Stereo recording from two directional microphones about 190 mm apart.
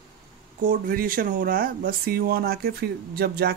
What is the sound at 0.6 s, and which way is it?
Speech, 50° right (ahead or behind).